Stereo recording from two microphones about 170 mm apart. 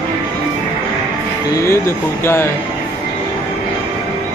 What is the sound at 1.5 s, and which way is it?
Speech, 15° left (ahead or behind).